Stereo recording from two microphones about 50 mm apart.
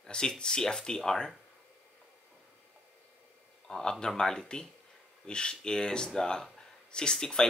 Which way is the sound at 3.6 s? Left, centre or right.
Centre.